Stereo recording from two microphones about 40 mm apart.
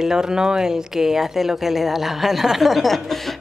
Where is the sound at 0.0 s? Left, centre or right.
Centre.